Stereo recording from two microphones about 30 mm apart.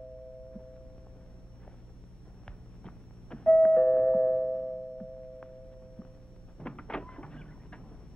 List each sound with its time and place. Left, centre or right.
2.8 s doorbell: left
6.6 s vehicle: left